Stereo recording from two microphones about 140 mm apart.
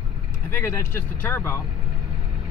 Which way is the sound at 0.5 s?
20° left (ahead or behind).